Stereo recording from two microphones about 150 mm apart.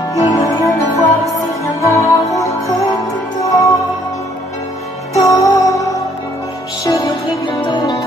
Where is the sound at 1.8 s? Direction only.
20° left (ahead or behind).